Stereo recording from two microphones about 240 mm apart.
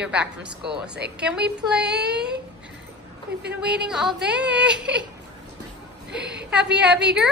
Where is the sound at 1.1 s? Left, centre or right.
Centre.